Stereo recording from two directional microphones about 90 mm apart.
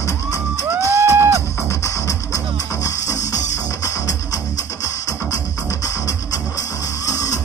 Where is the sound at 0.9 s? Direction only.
30° right (ahead or behind).